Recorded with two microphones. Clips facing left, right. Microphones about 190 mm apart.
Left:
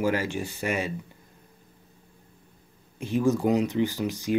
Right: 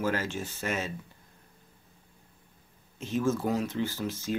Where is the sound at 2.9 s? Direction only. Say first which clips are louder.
Left 4 dB; 15° left (ahead or behind).